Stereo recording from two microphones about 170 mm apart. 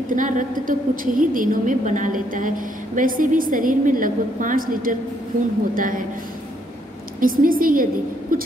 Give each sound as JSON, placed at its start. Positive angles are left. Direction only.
{"t": 0.1, "sound": "a woman's voice", "side_deg": -50}
{"t": 7.2, "sound": "a woman's voice", "side_deg": -55}